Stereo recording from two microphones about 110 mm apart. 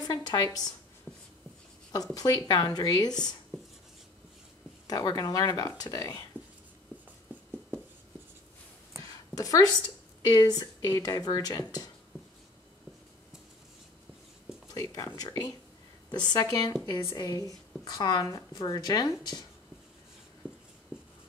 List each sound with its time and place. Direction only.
0.0 s a woman's voice: 35° left (ahead or behind)
2.1 s a woman's voice: 35° left (ahead or behind)
4.8 s a woman's voice: 35° left (ahead or behind)
7.3 s writing: 15° right (ahead or behind)
9.0 s a sound: 30° left (ahead or behind)
10.2 s a woman's voice: 35° left (ahead or behind)
14.7 s a woman's voice: 30° left (ahead or behind)